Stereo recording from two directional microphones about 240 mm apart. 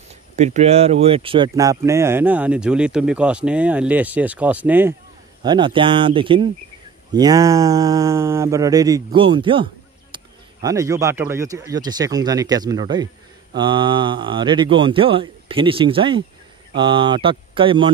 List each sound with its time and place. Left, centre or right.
0.1 s speech: right; by 4.9 s centre
5.4 s speech: centre